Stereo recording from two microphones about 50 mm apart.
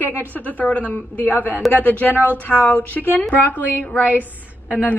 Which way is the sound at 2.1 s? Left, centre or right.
Right.